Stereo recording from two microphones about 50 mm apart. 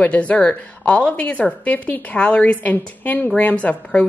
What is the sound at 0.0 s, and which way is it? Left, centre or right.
A woman's voice, left.